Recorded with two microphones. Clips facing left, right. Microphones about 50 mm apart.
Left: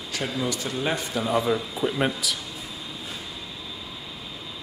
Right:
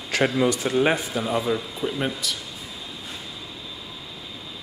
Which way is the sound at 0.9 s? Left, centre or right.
Centre.